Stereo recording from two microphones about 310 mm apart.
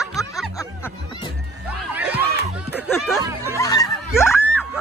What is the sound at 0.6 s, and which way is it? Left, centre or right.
Music, centre.